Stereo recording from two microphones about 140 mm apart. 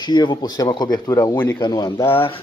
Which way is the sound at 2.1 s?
40° left (ahead or behind).